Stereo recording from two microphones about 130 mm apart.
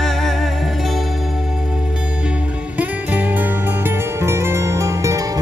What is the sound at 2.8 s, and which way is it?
Music, 15° right (ahead or behind).